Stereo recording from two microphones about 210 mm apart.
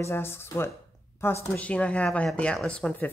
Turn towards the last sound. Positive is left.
turn(degrees=5)  # may be behind; listen again after turning